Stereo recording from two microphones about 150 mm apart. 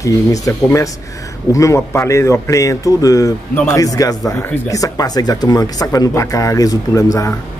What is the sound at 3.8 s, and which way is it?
Speech, 25° left (ahead or behind).